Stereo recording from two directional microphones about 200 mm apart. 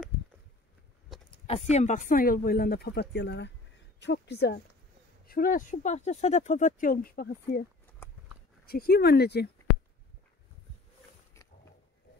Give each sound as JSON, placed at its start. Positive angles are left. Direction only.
{"t": 1.3, "sound": "speech", "side_deg": 30}
{"t": 5.2, "sound": "speech", "side_deg": 45}
{"t": 8.6, "sound": "speech", "side_deg": 50}
{"t": 11.4, "sound": "a sound", "side_deg": 15}